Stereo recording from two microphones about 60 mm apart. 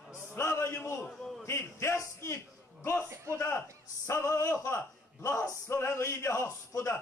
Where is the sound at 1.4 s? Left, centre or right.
Left.